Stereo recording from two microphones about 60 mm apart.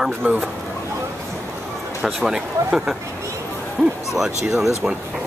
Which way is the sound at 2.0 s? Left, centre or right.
Centre.